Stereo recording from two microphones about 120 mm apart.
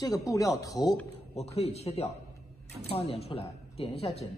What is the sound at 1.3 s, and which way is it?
Speech, 60° left (ahead or behind).